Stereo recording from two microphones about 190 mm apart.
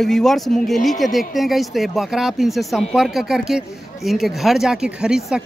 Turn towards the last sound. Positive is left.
turn(degrees=-5)  # may be behind; listen again after turning